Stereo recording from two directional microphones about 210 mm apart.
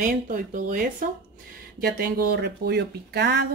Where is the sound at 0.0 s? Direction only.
40° right (ahead or behind).